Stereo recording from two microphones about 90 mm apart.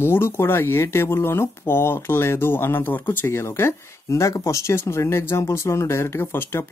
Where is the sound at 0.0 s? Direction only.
25° left (ahead or behind).